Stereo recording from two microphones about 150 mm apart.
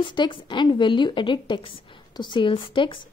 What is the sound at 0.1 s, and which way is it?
Speech, 30° left (ahead or behind).